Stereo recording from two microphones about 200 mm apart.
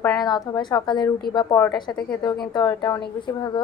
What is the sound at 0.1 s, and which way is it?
Speech, 20° left (ahead or behind).